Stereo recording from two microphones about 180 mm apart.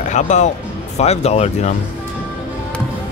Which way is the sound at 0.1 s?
40° left (ahead or behind).